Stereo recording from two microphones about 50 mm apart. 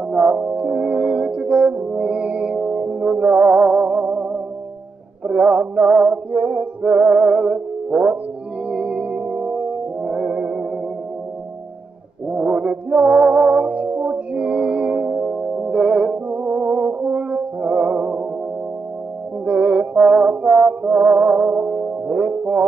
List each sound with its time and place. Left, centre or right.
0.1 s music: centre
0.4 s brass instrument: right
2.7 s music: right
12.3 s music: right
15.6 s music: centre
16.3 s music: right
19.4 s music: right